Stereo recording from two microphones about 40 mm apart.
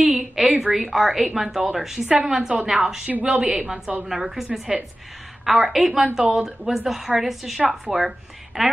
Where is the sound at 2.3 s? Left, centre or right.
Centre.